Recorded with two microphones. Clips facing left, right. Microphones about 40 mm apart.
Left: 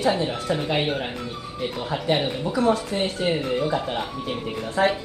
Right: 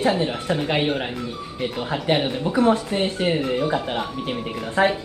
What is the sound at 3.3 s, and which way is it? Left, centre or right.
A woman's voice, centre.